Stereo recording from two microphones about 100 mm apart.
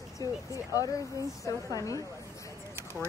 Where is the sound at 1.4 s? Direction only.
35° left (ahead or behind).